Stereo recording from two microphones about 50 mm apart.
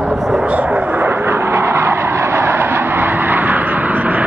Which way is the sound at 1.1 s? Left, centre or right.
Right.